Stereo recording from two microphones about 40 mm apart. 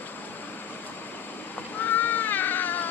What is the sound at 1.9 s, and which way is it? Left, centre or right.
Cat, left.